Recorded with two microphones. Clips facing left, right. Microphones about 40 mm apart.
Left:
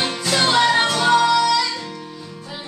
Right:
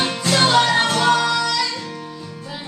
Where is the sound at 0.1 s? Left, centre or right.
Centre.